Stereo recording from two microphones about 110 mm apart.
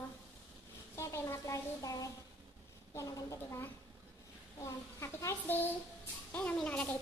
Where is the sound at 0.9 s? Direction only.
25° left (ahead or behind).